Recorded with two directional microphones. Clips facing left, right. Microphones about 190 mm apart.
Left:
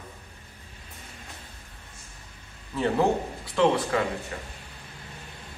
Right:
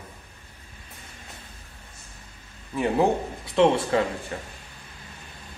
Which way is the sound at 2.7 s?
15° right (ahead or behind).